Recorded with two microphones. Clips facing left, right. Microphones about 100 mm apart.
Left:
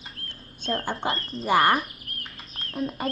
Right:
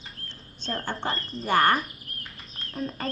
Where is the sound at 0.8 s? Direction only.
10° left (ahead or behind).